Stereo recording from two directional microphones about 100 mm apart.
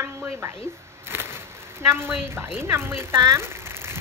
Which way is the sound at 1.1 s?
25° right (ahead or behind).